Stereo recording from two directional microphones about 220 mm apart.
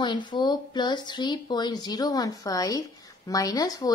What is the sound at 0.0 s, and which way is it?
Speech, 20° left (ahead or behind).